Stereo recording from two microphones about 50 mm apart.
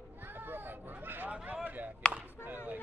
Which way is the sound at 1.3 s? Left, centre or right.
Right.